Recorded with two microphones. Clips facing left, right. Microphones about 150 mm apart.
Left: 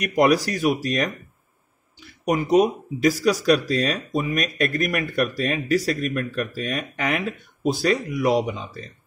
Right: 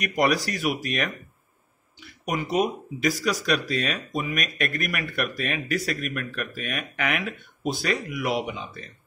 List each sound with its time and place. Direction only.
0.0 s speech: 40° left (ahead or behind)
2.2 s speech: 40° left (ahead or behind)